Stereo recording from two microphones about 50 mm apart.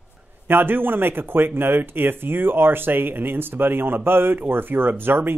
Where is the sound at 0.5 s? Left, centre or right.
Right.